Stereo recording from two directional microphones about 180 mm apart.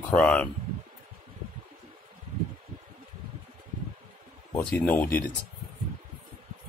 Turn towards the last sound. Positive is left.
turn(degrees=10)  # may be behind; listen again after turning